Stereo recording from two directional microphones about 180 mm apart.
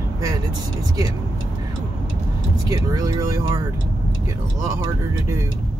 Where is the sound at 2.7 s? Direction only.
20° right (ahead or behind).